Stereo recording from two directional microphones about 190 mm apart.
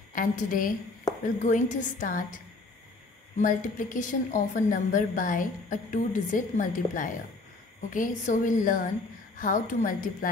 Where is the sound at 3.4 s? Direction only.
40° left (ahead or behind).